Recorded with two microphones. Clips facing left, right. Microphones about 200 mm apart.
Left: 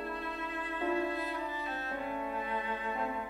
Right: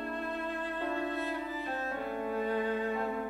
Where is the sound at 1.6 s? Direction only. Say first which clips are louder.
Right 2 dB; 40° right (ahead or behind).